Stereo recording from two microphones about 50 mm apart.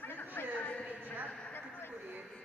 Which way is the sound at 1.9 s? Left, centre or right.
Right.